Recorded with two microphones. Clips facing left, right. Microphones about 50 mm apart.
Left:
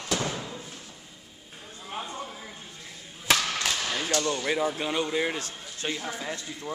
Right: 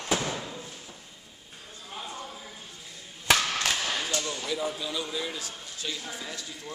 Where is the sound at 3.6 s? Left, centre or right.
Centre.